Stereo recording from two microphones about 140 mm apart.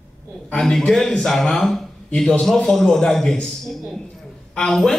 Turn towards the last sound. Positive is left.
turn(degrees=5)  # may be behind; listen again after turning